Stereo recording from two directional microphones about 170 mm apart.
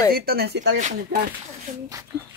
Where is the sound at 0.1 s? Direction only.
65° right (ahead or behind).